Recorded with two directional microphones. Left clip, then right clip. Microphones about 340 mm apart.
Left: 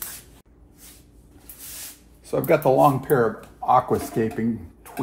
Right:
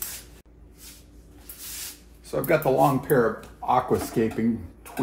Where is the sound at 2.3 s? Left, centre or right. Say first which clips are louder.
Left 3 dB; centre.